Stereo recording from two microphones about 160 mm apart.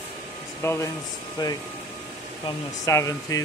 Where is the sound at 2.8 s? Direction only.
20° left (ahead or behind).